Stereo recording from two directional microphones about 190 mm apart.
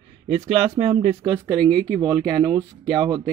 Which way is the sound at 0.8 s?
30° right (ahead or behind).